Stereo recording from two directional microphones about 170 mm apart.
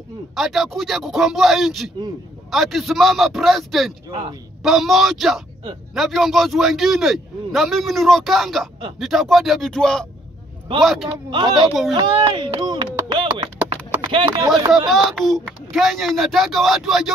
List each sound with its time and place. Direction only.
0.4 s a man's voice: centre (ahead or behind)
4.1 s speech: 30° right (ahead or behind)
4.6 s a man's voice: centre (ahead or behind)
11.2 s speech: 25° right (ahead or behind)
14.9 s a man's voice: centre (ahead or behind)